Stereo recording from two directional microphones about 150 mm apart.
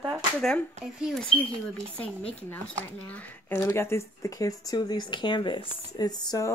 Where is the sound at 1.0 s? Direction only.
5° left (ahead or behind).